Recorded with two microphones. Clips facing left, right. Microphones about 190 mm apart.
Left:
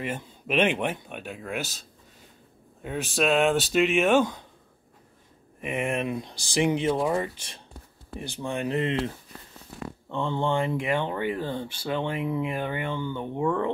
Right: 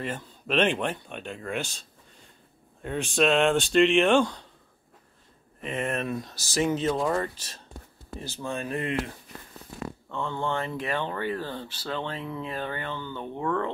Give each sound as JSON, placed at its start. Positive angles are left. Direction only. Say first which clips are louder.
{"t": 0.0, "sound": "speech", "louder": "left 1 dB", "side_deg": 10}
{"t": 2.8, "sound": "speech", "louder": "right 2 dB", "side_deg": 5}
{"t": 5.6, "sound": "speech", "louder": "left 2 dB", "side_deg": 10}